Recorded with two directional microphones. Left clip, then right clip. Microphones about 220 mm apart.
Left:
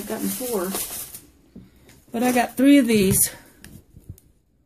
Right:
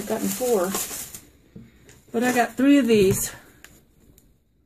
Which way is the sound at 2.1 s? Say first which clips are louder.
Even; 40° left (ahead or behind).